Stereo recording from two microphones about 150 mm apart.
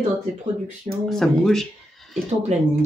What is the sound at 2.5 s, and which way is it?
Speech, 50° right (ahead or behind).